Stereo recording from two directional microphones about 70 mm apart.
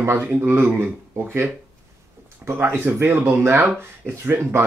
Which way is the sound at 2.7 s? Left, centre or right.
Right.